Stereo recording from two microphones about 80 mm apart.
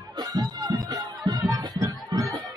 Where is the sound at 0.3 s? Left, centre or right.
Right.